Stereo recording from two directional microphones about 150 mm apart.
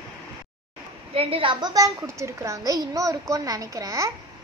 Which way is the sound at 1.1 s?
35° right (ahead or behind).